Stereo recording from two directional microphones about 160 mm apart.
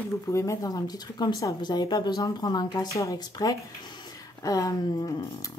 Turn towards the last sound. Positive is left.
turn(degrees=20)  # may be behind; listen again after turning